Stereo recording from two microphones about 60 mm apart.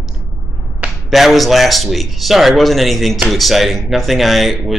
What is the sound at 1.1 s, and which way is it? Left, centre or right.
Speech, centre.